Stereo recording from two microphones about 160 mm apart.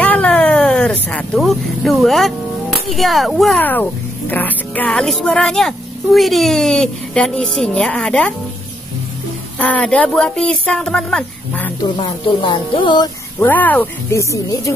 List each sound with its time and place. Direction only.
0.0 s vehicle: 10° left (ahead or behind)
3.6 s speech: 10° left (ahead or behind)
9.6 s speech: 10° left (ahead or behind)
11.8 s speech: 35° left (ahead or behind)
13.4 s speech: 10° left (ahead or behind)